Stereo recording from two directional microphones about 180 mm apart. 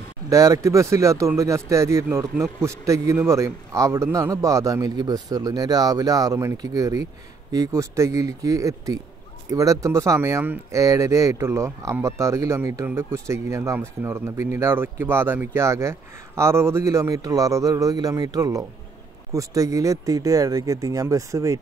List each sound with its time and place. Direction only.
0.3 s speech: 20° right (ahead or behind)